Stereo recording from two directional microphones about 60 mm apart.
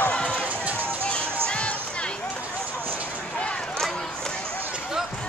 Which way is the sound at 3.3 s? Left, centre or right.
Centre.